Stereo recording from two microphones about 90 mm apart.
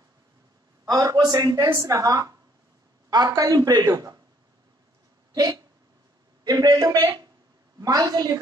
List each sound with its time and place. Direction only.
0.8 s a man's voice: 50° right (ahead or behind)
3.8 s a woman's voice: 35° right (ahead or behind)
5.3 s a man's voice: 45° right (ahead or behind)